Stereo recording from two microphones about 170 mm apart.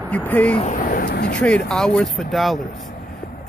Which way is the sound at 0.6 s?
55° left (ahead or behind).